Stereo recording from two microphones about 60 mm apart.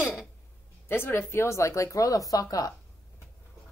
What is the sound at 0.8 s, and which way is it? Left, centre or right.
Speech, left.